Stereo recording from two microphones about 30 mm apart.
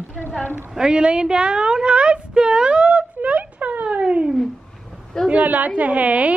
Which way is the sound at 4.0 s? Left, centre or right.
Right.